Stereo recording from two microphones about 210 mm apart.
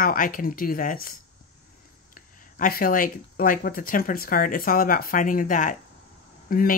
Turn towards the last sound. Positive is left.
turn(degrees=40)  # may be behind; listen again after turning